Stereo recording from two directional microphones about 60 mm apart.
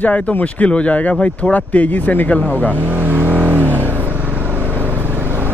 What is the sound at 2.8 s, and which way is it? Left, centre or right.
Vehicle, right.